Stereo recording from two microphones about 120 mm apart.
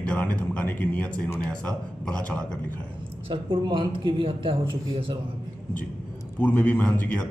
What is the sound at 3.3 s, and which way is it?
Speech, 45° right (ahead or behind).